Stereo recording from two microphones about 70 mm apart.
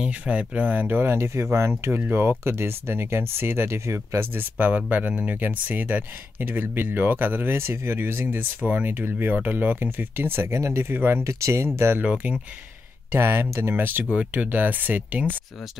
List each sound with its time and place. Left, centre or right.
0.0 s speech: centre
11.2 s speech: right
12.0 s speech: right
13.1 s speech: right
14.1 s speech: right